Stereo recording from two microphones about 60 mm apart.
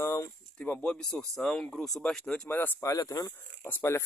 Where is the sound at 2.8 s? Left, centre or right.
Left.